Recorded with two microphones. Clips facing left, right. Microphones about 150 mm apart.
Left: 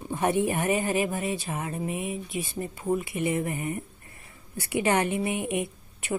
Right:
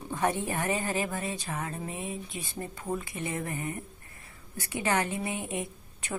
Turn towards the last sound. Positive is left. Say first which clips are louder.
# left 6 dB
turn(degrees=15)  # may be behind; listen again after turning